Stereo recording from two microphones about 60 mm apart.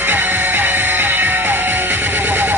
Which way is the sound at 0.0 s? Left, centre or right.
Right.